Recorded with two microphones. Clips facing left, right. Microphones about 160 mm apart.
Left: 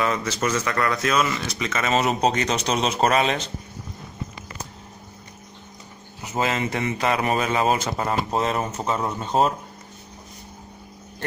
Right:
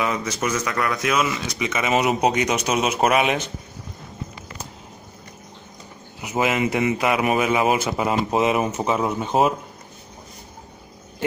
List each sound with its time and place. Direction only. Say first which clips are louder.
0.4 s speech: left 1 dB; 10° right (ahead or behind)
1.6 s speech: right 2 dB; 20° right (ahead or behind)
3.1 s speech: right 2 dB; 15° right (ahead or behind)
6.2 s speech: right 3 dB; 15° right (ahead or behind)